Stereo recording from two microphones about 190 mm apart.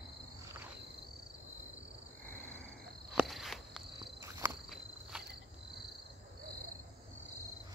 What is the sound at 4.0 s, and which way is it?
Cricket, 20° right (ahead or behind).